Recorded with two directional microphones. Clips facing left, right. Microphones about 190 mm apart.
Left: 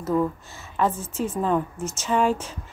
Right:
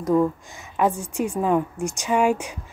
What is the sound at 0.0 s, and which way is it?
A woman's voice, 15° right (ahead or behind).